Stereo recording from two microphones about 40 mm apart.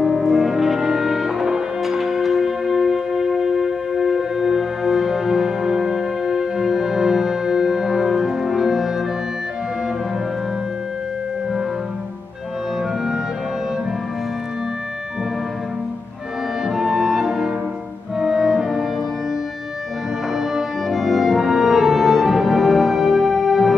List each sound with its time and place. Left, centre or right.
0.0 s brass instrument: centre
16.6 s music: centre
20.3 s music: centre